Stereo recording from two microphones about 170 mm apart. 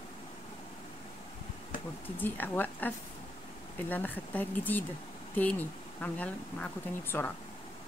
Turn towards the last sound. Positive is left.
turn(degrees=10)  # may be behind; listen again after turning